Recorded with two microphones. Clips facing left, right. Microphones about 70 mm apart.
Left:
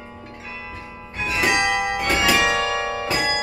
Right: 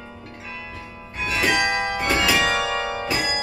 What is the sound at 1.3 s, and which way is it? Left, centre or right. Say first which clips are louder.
Music: left 1 dB; centre.